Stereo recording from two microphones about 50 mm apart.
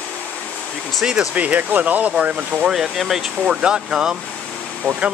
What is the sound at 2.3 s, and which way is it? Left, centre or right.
Speech, centre.